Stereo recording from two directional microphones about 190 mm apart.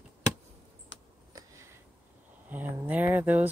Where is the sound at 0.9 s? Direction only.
75° left (ahead or behind).